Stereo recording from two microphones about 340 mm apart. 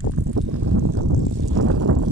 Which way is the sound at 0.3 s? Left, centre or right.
Right.